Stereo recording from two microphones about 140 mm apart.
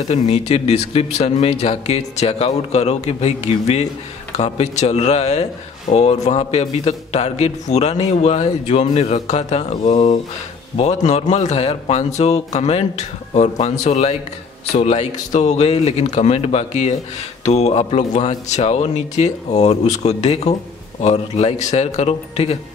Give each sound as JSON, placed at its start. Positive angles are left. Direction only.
{"t": 0.1, "sound": "speech", "side_deg": 50}